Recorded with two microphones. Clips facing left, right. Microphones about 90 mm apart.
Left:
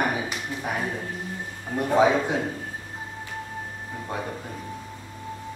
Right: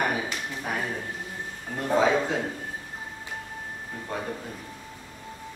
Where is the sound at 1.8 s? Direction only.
15° left (ahead or behind).